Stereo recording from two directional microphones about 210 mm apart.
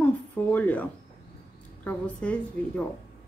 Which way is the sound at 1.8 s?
5° left (ahead or behind).